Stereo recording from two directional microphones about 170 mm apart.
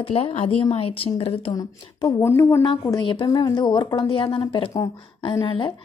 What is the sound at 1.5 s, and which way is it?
A woman's voice, 20° left (ahead or behind).